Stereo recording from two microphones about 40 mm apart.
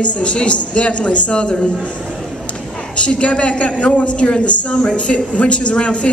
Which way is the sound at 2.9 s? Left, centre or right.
Left.